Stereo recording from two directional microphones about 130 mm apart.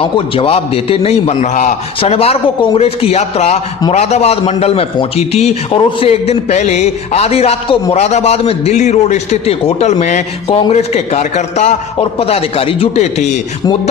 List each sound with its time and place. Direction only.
0.0 s a man's voice: 45° left (ahead or behind); by 1.8 s 65° left (ahead or behind)
2.0 s a man's voice: 50° left (ahead or behind)